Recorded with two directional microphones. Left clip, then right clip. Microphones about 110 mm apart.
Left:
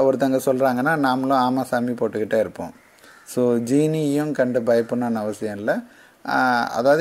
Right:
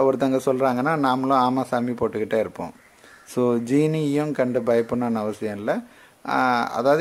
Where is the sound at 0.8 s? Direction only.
10° left (ahead or behind).